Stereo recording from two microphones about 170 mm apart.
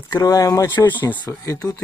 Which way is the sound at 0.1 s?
20° left (ahead or behind).